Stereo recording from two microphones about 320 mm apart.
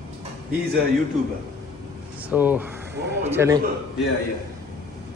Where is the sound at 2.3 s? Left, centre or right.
Centre.